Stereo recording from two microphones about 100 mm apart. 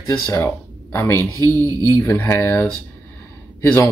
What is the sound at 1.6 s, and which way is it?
Speech, 40° right (ahead or behind).